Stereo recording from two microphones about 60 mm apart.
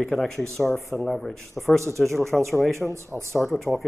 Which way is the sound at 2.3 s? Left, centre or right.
Right.